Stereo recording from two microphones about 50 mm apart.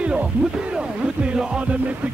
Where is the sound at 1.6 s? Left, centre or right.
Right.